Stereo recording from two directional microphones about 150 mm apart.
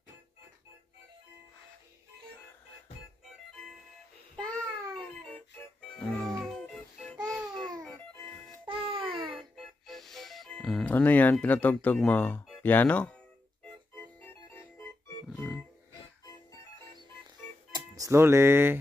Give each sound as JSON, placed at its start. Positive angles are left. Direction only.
{"t": 5.9, "sound": "music", "side_deg": 5}
{"t": 7.8, "sound": "music", "side_deg": 10}
{"t": 8.6, "sound": "music", "side_deg": -35}
{"t": 9.4, "sound": "music", "side_deg": 0}
{"t": 17.7, "sound": "speech", "side_deg": -20}